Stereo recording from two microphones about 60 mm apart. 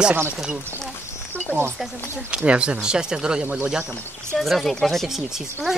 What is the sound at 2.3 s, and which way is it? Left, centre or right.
Speech, centre.